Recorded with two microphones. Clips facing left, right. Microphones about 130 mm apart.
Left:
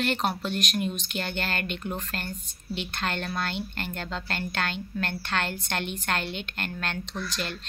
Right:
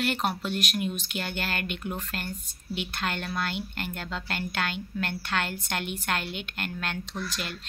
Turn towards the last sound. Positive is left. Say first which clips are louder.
# left 2 dB
turn(degrees=-10)  # may be behind; listen again after turning